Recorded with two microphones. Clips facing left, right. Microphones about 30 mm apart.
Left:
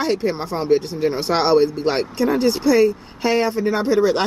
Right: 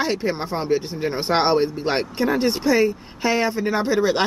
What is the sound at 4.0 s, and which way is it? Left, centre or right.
Speech, right.